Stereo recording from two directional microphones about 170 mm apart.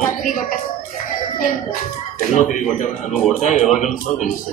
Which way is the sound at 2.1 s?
50° left (ahead or behind).